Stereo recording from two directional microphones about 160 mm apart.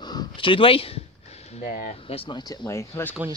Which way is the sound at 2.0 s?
35° left (ahead or behind).